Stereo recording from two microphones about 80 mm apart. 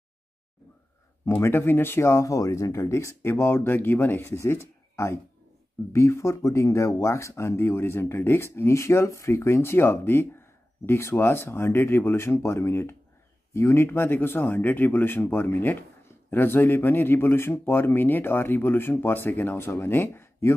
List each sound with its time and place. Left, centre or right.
1.2 s speech: left